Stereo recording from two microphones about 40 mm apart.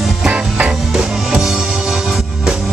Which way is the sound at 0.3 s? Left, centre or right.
Right.